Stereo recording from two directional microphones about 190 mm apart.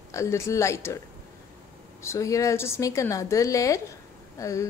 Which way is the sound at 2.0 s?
15° left (ahead or behind).